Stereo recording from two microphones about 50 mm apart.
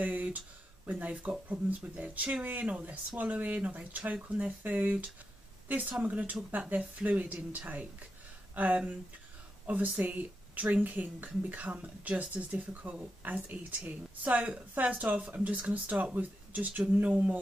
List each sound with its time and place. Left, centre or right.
0.0 s speech: right